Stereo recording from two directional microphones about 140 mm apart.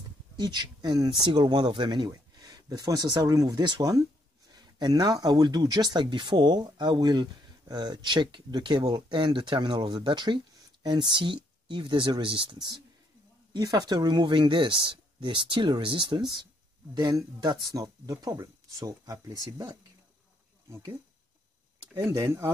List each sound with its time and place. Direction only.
0.4 s speech: 30° right (ahead or behind)
22.1 s speech: 20° right (ahead or behind)